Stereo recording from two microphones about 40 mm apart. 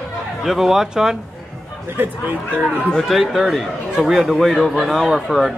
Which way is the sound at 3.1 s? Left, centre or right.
Centre.